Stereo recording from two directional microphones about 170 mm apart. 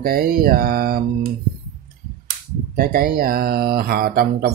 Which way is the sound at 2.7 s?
60° right (ahead or behind).